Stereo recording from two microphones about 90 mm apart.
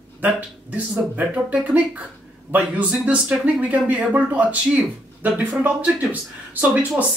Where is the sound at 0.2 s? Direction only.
15° right (ahead or behind).